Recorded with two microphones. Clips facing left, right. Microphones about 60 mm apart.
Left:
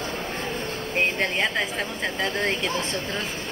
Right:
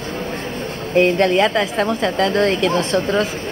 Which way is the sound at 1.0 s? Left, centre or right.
Right.